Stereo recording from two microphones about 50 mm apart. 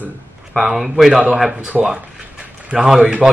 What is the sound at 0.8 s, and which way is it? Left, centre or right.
Speech, centre.